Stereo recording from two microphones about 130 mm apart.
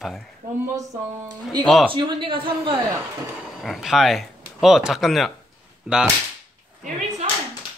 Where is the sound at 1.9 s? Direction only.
40° right (ahead or behind).